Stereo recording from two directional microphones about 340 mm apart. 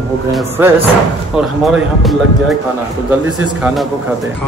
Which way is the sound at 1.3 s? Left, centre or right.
Centre.